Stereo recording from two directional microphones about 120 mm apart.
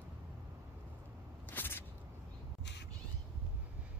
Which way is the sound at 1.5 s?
15° left (ahead or behind).